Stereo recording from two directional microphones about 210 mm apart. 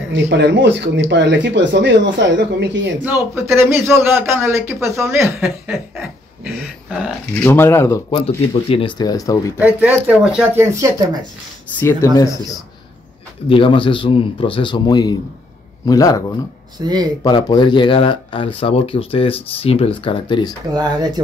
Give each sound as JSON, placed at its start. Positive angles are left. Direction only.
{"t": 0.1, "sound": "speech", "side_deg": -55}
{"t": 3.0, "sound": "a man's voice", "side_deg": -10}
{"t": 6.9, "sound": "speech", "side_deg": 0}
{"t": 7.4, "sound": "speech", "side_deg": 10}
{"t": 9.8, "sound": "a man's voice", "side_deg": -5}
{"t": 11.8, "sound": "speech", "side_deg": 15}
{"t": 13.5, "sound": "speech", "side_deg": 25}
{"t": 16.7, "sound": "speech", "side_deg": -20}
{"t": 17.2, "sound": "speech", "side_deg": 20}
{"t": 20.7, "sound": "speech", "side_deg": -20}